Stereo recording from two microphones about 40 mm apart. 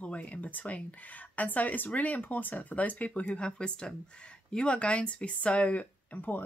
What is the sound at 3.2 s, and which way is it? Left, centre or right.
Speech, left.